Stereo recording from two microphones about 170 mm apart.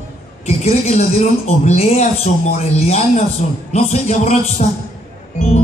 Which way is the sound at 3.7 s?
45° left (ahead or behind).